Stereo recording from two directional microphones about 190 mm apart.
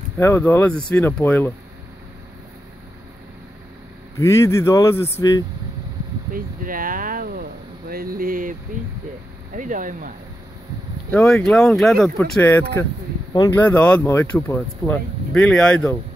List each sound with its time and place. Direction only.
0.2 s speech: 10° left (ahead or behind)
4.2 s speech: 15° left (ahead or behind)
6.3 s speech: 45° right (ahead or behind)
9.6 s speech: 45° right (ahead or behind)
11.1 s speech: 10° left (ahead or behind)
13.3 s speech: 20° left (ahead or behind)
13.6 s speech: 10° left (ahead or behind)